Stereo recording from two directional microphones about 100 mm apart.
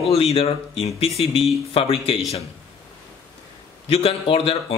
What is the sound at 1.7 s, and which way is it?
Speech, 70° left (ahead or behind).